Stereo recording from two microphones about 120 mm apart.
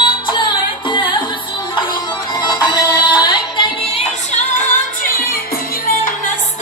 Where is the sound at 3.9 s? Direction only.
70° left (ahead or behind); by 4.7 s 90° left.